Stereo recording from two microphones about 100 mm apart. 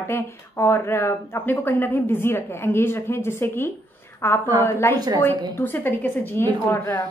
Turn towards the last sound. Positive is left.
turn(degrees=20)  # may be behind; listen again after turning